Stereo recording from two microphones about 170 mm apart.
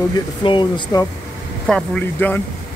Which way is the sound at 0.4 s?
30° left (ahead or behind).